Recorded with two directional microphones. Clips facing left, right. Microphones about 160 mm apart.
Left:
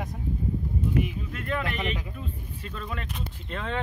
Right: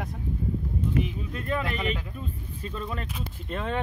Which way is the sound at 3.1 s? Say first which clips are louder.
Right 2 dB; 5° right (ahead or behind).